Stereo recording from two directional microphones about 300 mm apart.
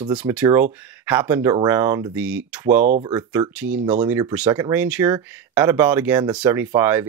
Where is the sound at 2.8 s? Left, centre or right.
Right.